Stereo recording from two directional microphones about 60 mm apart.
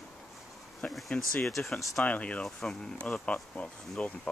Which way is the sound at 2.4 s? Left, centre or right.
Centre.